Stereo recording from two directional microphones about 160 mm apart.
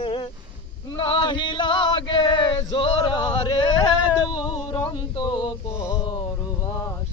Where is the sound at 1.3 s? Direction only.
30° left (ahead or behind).